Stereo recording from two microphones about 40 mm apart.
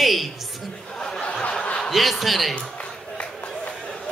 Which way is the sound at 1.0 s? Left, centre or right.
Centre.